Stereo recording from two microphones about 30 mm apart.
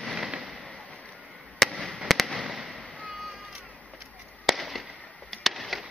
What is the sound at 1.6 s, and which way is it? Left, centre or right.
Fireworks, centre.